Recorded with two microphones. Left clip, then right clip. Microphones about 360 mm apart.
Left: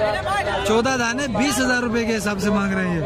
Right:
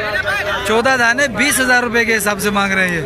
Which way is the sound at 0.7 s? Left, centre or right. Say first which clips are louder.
Right 9 dB; centre.